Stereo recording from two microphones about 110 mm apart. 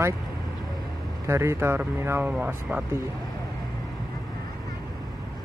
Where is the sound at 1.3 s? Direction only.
25° right (ahead or behind).